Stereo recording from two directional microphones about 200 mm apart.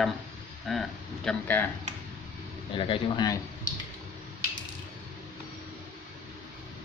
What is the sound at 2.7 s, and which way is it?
Speech, 25° left (ahead or behind).